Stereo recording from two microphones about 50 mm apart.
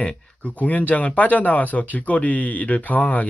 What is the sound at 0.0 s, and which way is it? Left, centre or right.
Speech, left.